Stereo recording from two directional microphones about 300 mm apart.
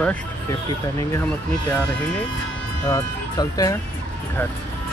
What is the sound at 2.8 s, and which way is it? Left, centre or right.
Speech, centre.